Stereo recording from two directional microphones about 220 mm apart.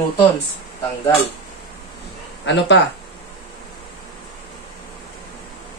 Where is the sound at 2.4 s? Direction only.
55° left (ahead or behind).